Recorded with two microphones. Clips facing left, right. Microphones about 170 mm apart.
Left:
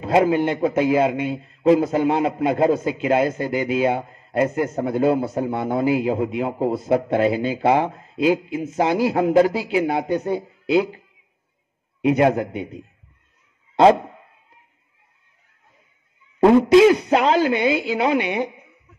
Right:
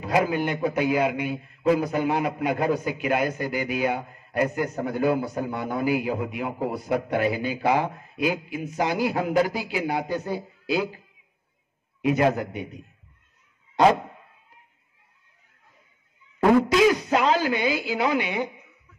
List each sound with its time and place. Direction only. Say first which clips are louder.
0.0 s a man's voice: left 6 dB; 25° left (ahead or behind)
12.0 s a man's voice: left 4 dB; 20° left (ahead or behind)
16.4 s a man's voice: left 6 dB; 25° left (ahead or behind)